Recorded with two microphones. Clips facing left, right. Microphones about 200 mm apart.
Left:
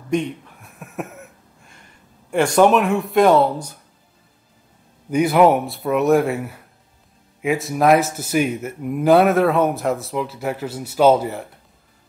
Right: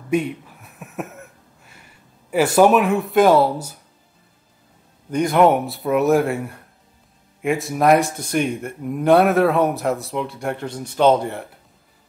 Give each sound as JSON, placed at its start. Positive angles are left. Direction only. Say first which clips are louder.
{"t": 0.1, "sound": "a sound", "louder": "right 1 dB", "side_deg": -5}
{"t": 2.3, "sound": "speech", "louder": "even", "side_deg": -5}
{"t": 5.1, "sound": "speech", "louder": "left 1 dB", "side_deg": 5}